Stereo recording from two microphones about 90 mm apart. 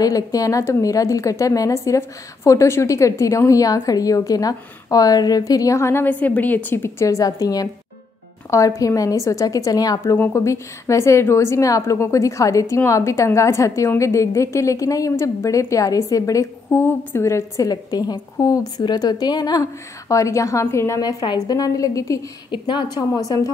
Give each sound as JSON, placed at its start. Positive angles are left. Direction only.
{"t": 0.0, "sound": "a woman's voice", "side_deg": 40}
{"t": 6.0, "sound": "a woman's voice", "side_deg": 20}
{"t": 7.1, "sound": "a woman's voice", "side_deg": 40}
{"t": 21.4, "sound": "a woman's voice", "side_deg": 40}
{"t": 22.5, "sound": "a woman's voice", "side_deg": 60}